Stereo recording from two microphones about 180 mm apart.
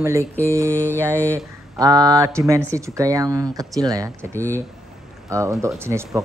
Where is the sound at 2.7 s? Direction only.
15° right (ahead or behind).